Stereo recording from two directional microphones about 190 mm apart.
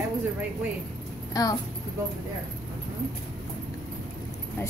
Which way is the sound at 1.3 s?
20° left (ahead or behind).